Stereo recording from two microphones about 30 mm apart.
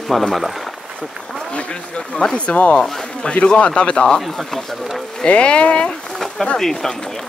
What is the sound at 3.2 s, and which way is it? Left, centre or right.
Speech, left.